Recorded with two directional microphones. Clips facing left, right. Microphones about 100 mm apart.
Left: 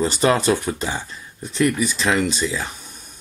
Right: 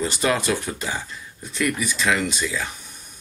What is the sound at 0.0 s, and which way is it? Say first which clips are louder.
Speech: left 5 dB; 30° left (ahead or behind).